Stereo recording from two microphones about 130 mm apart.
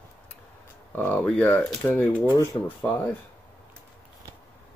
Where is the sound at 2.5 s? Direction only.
30° left (ahead or behind).